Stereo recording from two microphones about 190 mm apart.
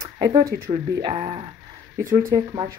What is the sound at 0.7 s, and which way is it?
Speech, 25° right (ahead or behind).